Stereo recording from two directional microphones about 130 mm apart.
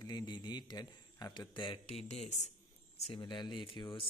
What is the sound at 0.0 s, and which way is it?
A man's voice, 35° left (ahead or behind).